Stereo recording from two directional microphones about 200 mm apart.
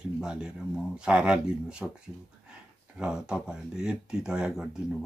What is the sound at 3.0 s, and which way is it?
Speech, 5° right (ahead or behind).